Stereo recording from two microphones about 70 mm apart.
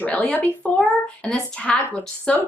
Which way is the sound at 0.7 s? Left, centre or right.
Centre.